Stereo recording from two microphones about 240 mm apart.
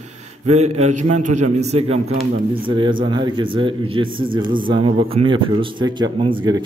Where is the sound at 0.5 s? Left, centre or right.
Right.